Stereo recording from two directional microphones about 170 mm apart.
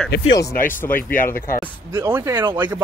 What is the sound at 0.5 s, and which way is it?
Speech, 55° left (ahead or behind).